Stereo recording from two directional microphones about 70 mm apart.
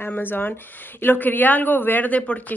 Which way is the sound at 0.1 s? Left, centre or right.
Left.